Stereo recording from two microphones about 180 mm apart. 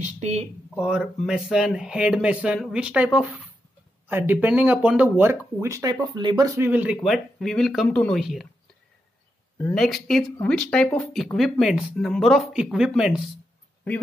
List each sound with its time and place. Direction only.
0.0 s speech: 35° right (ahead or behind)
0.7 s speech: 5° right (ahead or behind)
9.8 s speech: centre (ahead or behind)